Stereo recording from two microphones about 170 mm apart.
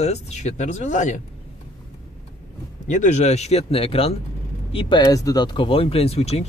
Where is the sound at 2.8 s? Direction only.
45° left (ahead or behind).